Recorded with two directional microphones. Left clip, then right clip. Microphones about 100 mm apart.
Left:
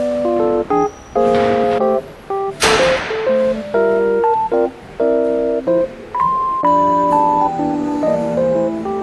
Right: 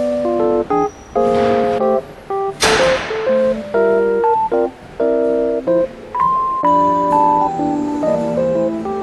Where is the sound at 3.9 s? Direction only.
Centre (ahead or behind).